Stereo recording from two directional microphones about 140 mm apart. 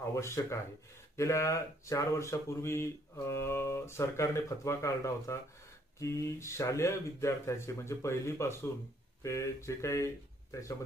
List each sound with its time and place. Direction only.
0.1 s speech: 20° left (ahead or behind)